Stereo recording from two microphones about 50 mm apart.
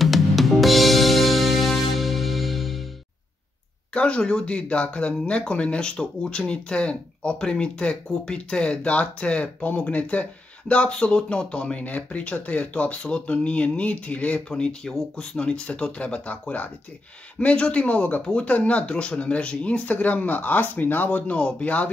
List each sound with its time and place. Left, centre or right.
0.0 s music: centre
3.9 s speech: left
14.5 s speech: centre; by 21.2 s left
21.3 s speech: left